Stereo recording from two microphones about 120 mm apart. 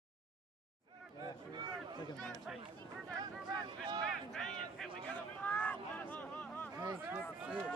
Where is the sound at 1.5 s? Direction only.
40° right (ahead or behind).